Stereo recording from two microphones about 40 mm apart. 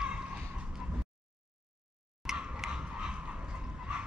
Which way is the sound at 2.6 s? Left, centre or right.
Centre.